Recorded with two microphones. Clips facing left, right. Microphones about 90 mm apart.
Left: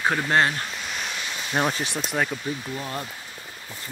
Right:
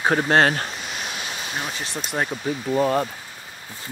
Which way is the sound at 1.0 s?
20° right (ahead or behind).